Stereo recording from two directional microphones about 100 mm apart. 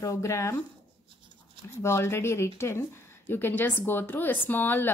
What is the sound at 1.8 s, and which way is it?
Speech, 25° left (ahead or behind).